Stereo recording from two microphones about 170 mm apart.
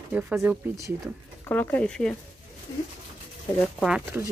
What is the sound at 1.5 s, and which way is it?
Speech, 10° left (ahead or behind).